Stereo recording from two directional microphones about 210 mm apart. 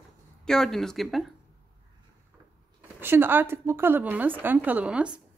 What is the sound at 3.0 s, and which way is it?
Speech, 10° right (ahead or behind).